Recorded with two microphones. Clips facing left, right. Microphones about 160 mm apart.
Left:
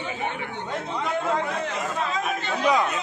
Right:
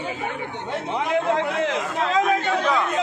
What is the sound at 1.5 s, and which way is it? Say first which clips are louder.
Speech: right 4 dB; 85° right.